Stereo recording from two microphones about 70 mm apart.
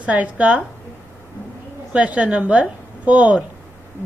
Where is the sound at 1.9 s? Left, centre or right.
Centre.